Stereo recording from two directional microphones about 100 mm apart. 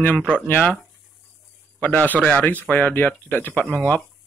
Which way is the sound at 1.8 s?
15° left (ahead or behind).